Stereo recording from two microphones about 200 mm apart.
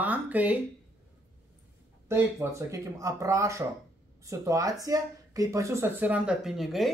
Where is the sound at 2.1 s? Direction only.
15° right (ahead or behind).